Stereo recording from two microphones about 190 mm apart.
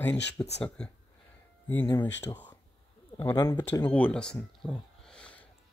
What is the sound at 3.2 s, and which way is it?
Speech, 15° left (ahead or behind).